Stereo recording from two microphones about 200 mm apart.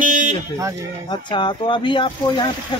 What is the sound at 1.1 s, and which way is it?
Speech, 25° left (ahead or behind).